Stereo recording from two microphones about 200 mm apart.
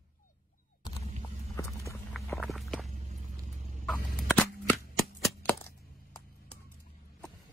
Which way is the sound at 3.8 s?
5° left (ahead or behind).